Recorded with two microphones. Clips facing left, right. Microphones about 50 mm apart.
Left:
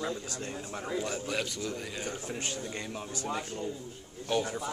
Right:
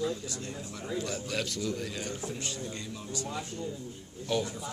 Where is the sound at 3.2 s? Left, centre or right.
Left.